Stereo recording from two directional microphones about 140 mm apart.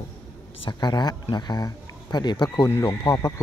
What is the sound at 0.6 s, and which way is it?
Speech, 30° left (ahead or behind).